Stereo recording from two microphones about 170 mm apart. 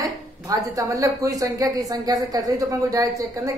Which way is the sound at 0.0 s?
20° right (ahead or behind).